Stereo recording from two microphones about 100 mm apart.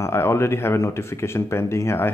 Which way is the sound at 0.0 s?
25° left (ahead or behind).